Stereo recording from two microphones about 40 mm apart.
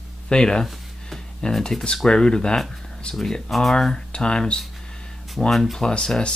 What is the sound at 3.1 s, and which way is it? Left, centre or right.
Speech, centre.